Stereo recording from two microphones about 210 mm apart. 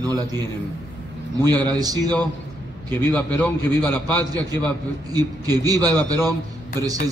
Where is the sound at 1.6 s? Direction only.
20° right (ahead or behind).